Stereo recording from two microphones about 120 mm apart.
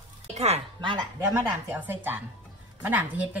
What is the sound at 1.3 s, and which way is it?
Speech, 15° right (ahead or behind).